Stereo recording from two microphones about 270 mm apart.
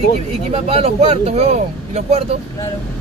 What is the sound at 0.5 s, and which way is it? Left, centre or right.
Speech, right.